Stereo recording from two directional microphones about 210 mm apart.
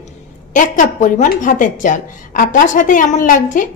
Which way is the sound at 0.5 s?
40° left (ahead or behind).